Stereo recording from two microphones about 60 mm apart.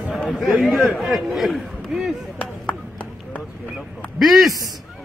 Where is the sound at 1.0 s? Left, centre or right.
Centre.